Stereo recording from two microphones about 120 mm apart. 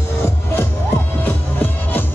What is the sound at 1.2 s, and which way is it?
Music, 15° left (ahead or behind).